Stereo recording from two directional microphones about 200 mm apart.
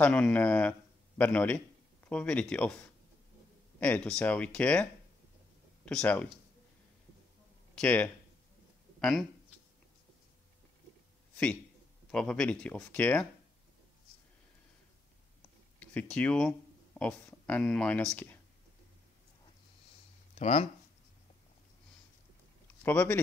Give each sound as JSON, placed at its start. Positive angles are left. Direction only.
{"t": 0.0, "sound": "a man's voice", "side_deg": 5}
{"t": 5.9, "sound": "speech", "side_deg": 5}
{"t": 7.7, "sound": "speech", "side_deg": 5}
{"t": 12.1, "sound": "speech", "side_deg": 5}
{"t": 15.8, "sound": "speech", "side_deg": 5}
{"t": 20.3, "sound": "speech", "side_deg": 35}
{"t": 22.8, "sound": "speech", "side_deg": 10}